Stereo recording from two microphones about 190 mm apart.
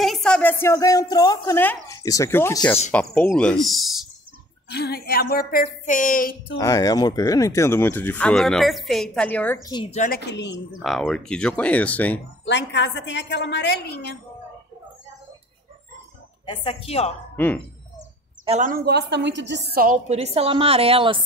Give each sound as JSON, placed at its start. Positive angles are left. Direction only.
{"t": 0.0, "sound": "speech", "side_deg": 0}
{"t": 4.6, "sound": "speech", "side_deg": 60}
{"t": 6.6, "sound": "speech", "side_deg": 20}
{"t": 9.7, "sound": "a woman's voice", "side_deg": 25}
{"t": 9.9, "sound": "a woman's voice", "side_deg": 50}
{"t": 10.8, "sound": "speech", "side_deg": 0}
{"t": 12.4, "sound": "a woman's voice", "side_deg": 65}
{"t": 16.4, "sound": "a woman's voice", "side_deg": 30}
{"t": 18.4, "sound": "a sound", "side_deg": -35}
{"t": 18.7, "sound": "a woman's voice", "side_deg": -55}
{"t": 20.2, "sound": "a woman's voice", "side_deg": -30}